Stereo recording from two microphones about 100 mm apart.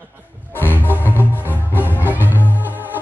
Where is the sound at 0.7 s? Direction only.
20° right (ahead or behind).